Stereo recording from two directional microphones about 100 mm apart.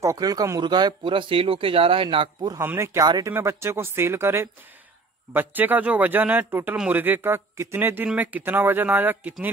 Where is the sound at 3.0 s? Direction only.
40° right (ahead or behind).